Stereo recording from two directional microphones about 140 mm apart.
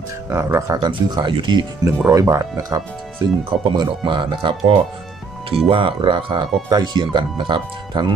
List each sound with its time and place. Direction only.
0.3 s speech: 20° right (ahead or behind)
1.9 s speech: 25° right (ahead or behind)
3.2 s speech: 35° right (ahead or behind)